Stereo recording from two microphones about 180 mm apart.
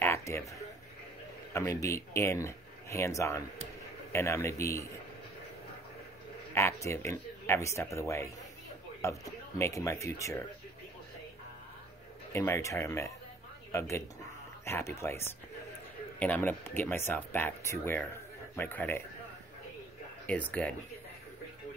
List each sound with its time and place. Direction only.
0.0 s a sound: 15° left (ahead or behind)
1.5 s speech: 15° left (ahead or behind)
6.5 s speech: 15° left (ahead or behind)
12.3 s speech: 15° left (ahead or behind)
20.2 s speech: 10° left (ahead or behind)